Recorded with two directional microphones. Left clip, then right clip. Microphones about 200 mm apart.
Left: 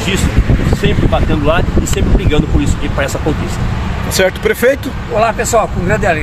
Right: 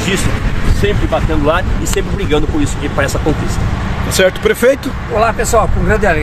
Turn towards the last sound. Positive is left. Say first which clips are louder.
# even
turn(degrees=0)  # may be behind; listen again after turning